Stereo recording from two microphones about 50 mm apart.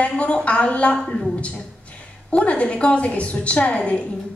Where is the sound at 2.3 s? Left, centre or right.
Left.